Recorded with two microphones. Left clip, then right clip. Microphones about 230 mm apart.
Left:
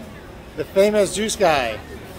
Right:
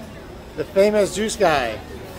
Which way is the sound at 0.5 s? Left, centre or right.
Centre.